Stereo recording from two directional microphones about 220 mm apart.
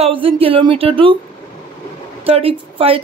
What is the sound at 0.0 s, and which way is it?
Speech, 25° right (ahead or behind).